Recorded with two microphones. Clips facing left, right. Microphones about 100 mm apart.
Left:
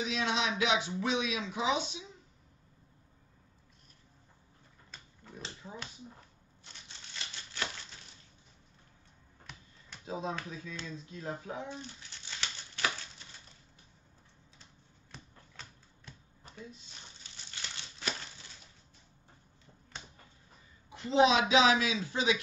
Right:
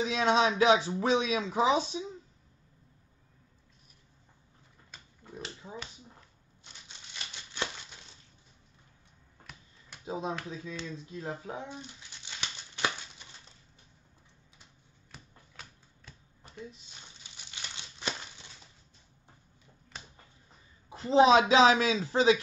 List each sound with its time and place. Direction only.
0.0 s speech: 40° right (ahead or behind)
4.9 s pig: 10° right (ahead or behind)
10.0 s speech: 20° right (ahead or behind)
12.4 s crumpling: 15° right (ahead or behind)
15.0 s a sound: 5° right (ahead or behind)
17.6 s crumpling: 20° right (ahead or behind)
20.9 s speech: 35° right (ahead or behind)